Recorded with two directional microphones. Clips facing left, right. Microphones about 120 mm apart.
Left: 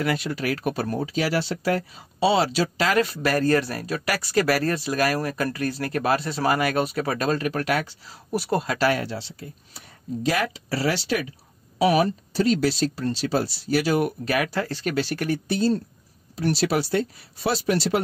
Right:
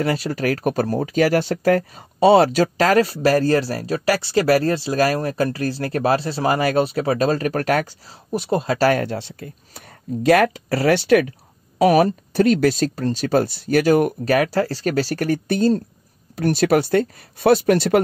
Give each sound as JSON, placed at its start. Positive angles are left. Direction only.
{"t": 0.0, "sound": "speech", "side_deg": -35}
{"t": 8.3, "sound": "speech", "side_deg": -25}
{"t": 8.7, "sound": "speech", "side_deg": -45}